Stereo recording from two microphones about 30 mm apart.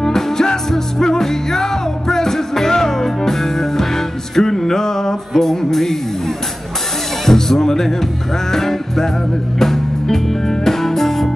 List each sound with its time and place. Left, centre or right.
0.0 s music: centre
7.2 s music: centre